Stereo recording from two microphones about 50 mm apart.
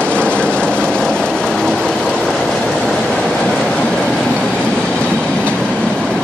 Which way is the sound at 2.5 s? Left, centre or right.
Centre.